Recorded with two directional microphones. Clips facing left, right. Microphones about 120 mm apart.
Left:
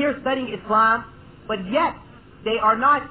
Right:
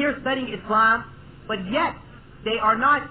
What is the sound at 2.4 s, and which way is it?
Speech, 35° left (ahead or behind).